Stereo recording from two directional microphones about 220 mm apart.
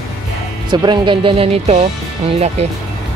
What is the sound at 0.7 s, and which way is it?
Speech, 20° right (ahead or behind).